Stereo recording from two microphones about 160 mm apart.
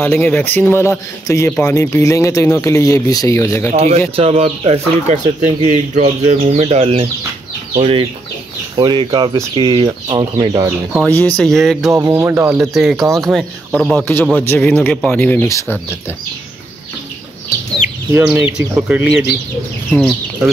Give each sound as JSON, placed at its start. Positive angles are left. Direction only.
{"t": 0.0, "sound": "speech", "side_deg": 10}
{"t": 3.7, "sound": "speech", "side_deg": -40}
{"t": 11.1, "sound": "speech", "side_deg": 10}
{"t": 11.9, "sound": "speech", "side_deg": -20}
{"t": 12.5, "sound": "speech", "side_deg": 0}
{"t": 14.2, "sound": "speech", "side_deg": 10}
{"t": 18.1, "sound": "speech", "side_deg": -15}